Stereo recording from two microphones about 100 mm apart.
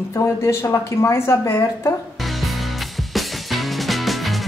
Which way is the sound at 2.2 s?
Centre (ahead or behind).